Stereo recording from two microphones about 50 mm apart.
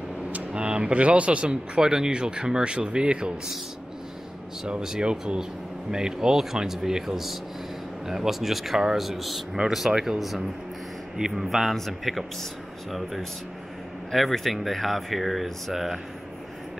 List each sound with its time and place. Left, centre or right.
0.3 s speech: right
4.6 s speech: centre
14.1 s speech: centre